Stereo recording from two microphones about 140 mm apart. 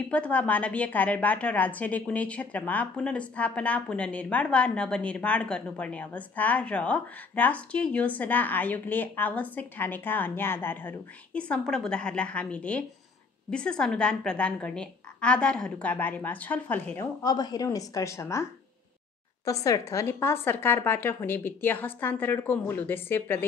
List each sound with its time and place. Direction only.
0.1 s a woman's voice: 10° left (ahead or behind)